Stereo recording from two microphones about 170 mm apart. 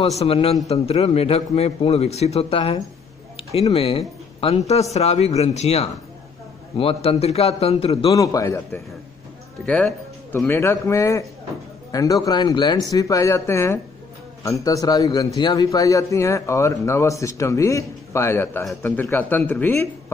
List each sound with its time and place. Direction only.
0.2 s a man's voice: 35° left (ahead or behind)
8.1 s a man's voice: 20° left (ahead or behind)